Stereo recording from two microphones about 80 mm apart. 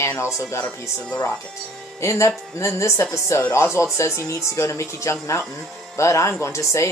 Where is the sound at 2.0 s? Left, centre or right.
Left.